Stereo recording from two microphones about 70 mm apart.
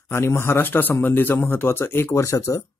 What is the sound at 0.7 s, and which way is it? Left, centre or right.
Speech, left.